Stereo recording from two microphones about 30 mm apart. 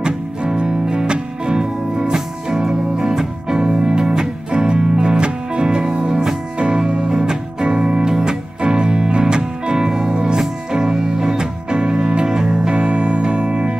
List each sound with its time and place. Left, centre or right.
0.6 s music: right
12.4 s music: right
12.7 s music: right